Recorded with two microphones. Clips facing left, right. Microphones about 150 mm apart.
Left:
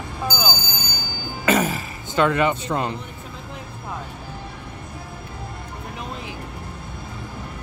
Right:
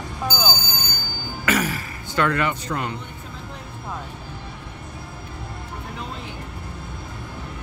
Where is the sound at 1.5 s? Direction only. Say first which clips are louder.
Left 3 dB; 25° left (ahead or behind).